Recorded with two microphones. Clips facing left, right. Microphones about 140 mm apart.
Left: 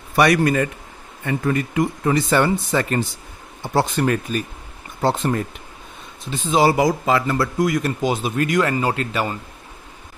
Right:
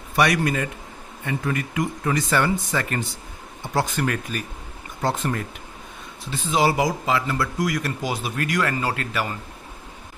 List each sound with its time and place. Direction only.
0.1 s speech: 50° left (ahead or behind)
1.5 s speech: 30° left (ahead or behind)
6.8 s speech: 45° left (ahead or behind)
7.5 s speech: 25° left (ahead or behind)